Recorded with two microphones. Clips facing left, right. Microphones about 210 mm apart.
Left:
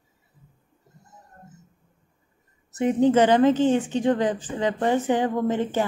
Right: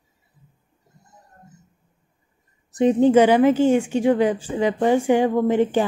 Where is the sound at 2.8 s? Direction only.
15° right (ahead or behind).